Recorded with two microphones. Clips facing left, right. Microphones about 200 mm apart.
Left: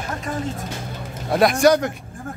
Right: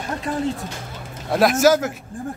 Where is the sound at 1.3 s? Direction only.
Centre (ahead or behind).